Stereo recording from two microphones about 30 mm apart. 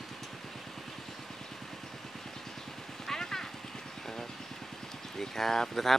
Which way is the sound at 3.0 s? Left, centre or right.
Centre.